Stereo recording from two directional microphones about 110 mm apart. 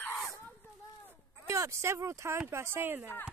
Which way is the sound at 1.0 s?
25° right (ahead or behind).